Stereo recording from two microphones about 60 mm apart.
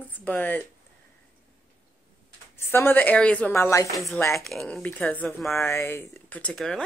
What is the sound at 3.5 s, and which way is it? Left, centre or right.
Speech, left.